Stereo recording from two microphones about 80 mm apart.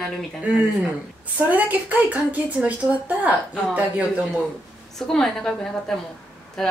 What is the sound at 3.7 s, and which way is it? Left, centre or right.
Speech, centre.